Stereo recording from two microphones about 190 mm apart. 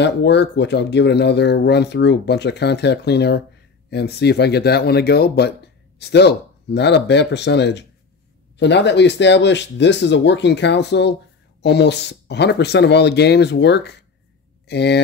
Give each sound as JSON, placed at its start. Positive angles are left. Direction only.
{"t": 0.0, "sound": "speech", "side_deg": 65}